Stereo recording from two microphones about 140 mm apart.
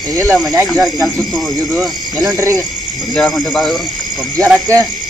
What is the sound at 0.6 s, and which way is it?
Speech, 5° left (ahead or behind).